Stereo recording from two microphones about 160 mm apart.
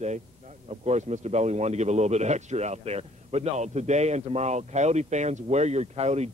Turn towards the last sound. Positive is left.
turn(degrees=-45)  # may be behind; listen again after turning